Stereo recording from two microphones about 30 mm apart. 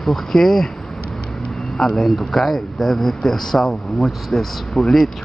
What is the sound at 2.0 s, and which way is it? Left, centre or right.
Speech, centre.